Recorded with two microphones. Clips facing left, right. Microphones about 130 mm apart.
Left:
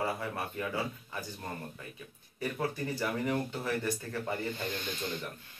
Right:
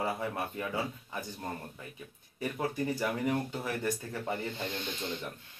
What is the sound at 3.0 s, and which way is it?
Speech, 20° right (ahead or behind).